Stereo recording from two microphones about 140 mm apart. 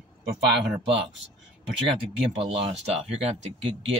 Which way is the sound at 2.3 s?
40° right (ahead or behind).